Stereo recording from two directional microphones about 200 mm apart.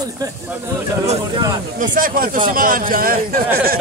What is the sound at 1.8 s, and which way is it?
A man's voice, 45° right (ahead or behind).